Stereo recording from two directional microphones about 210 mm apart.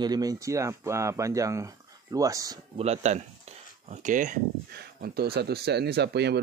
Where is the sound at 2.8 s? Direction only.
30° right (ahead or behind).